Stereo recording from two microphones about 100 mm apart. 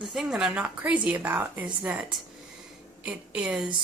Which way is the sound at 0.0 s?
5° right (ahead or behind).